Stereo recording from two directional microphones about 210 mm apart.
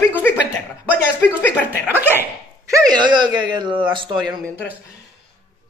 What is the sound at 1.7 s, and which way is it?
Speech, 10° right (ahead or behind).